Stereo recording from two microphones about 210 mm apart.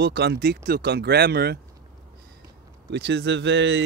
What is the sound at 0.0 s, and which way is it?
Speech, 50° right (ahead or behind).